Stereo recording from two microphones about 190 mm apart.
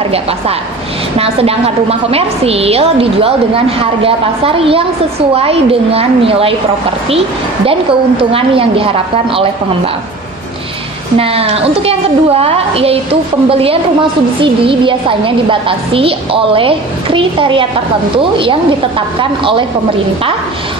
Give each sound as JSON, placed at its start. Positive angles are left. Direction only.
{"t": 1.1, "sound": "a woman's voice", "side_deg": -30}
{"t": 11.1, "sound": "a woman's voice", "side_deg": -30}